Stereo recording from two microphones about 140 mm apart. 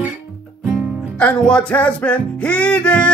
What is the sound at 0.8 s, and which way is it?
Music, 5° left (ahead or behind).